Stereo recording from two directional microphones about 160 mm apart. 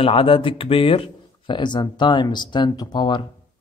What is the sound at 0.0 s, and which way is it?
A man's voice, 35° left (ahead or behind).